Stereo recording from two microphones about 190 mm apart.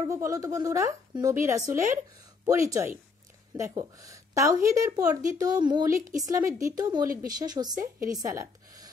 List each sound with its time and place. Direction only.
0.0 s a woman's voice: 15° right (ahead or behind)